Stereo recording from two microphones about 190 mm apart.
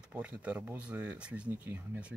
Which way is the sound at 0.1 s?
5° right (ahead or behind).